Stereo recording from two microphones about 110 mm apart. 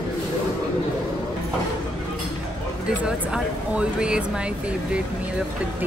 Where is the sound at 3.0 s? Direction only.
10° right (ahead or behind).